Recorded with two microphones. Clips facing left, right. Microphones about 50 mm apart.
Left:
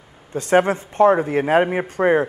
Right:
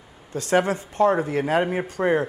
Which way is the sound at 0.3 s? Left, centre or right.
Left.